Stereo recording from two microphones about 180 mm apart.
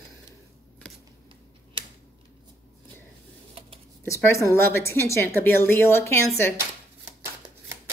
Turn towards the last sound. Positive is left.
turn(degrees=15)  # may be behind; listen again after turning